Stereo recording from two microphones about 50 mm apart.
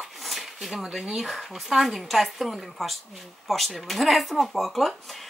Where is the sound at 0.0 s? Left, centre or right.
Centre.